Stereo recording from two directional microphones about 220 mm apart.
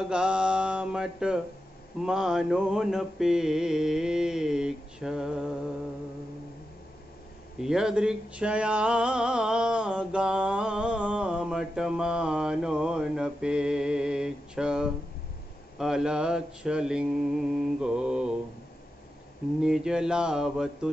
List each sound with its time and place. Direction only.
0.0 s mantra: 5° right (ahead or behind)
2.0 s speech: centre (ahead or behind)
7.6 s speech: 5° right (ahead or behind)
19.6 s speech: 5° right (ahead or behind)